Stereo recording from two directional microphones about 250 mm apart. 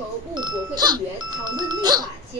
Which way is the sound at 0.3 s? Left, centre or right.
Centre.